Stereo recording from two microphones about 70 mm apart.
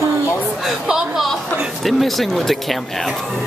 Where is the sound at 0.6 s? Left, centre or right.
Centre.